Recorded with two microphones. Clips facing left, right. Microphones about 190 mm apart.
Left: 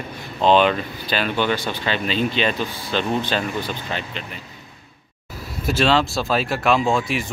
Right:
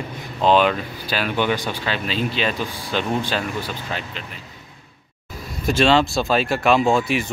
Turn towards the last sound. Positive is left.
turn(degrees=0)  # may be behind; listen again after turning